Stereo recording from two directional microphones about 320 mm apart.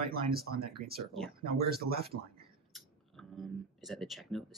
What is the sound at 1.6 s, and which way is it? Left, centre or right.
Speech, right.